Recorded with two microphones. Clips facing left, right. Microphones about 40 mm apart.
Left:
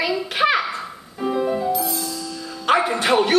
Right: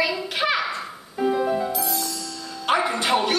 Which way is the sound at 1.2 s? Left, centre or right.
Centre.